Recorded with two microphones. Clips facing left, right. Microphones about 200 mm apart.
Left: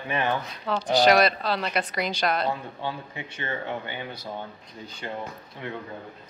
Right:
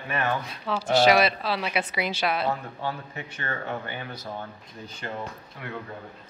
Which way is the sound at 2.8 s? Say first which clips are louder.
Even; 15° left (ahead or behind).